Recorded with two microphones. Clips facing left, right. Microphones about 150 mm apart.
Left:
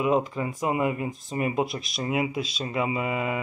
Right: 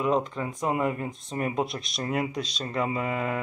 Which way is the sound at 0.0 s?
5° left (ahead or behind).